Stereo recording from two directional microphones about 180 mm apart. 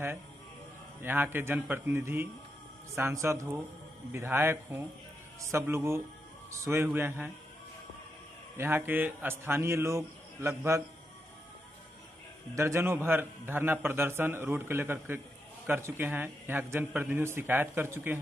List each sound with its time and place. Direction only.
1.0 s a man's voice: 10° right (ahead or behind)
8.5 s a man's voice: 10° right (ahead or behind)
12.5 s a man's voice: 15° right (ahead or behind)